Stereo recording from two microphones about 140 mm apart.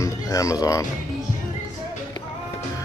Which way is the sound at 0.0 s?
25° left (ahead or behind).